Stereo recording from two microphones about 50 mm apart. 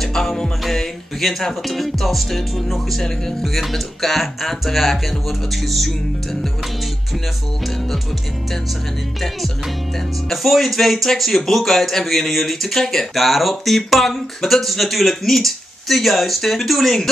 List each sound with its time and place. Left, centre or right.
0.0 s music: centre
5.5 s speech: centre
10.3 s speech: centre